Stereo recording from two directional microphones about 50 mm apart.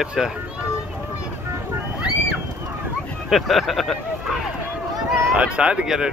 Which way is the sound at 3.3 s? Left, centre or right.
Centre.